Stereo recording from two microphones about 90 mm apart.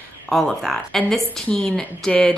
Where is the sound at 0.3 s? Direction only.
5° left (ahead or behind).